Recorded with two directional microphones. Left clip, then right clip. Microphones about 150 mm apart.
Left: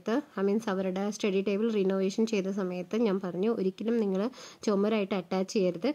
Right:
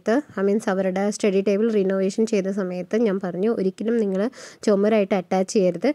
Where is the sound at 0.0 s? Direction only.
40° right (ahead or behind).